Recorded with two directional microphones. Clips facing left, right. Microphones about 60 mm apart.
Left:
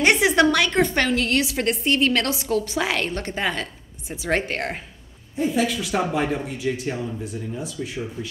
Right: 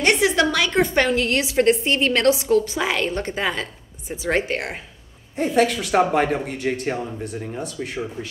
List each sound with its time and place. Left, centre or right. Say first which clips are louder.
0.0 s a woman's voice: left 1 dB; centre
0.5 s a woman's voice: even; centre
2.5 s a woman's voice: right 3 dB; centre
3.0 s a woman's voice: right 2 dB; centre
5.3 s speech: right 3 dB; right